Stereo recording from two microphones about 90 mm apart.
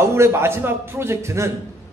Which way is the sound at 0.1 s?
30° right (ahead or behind).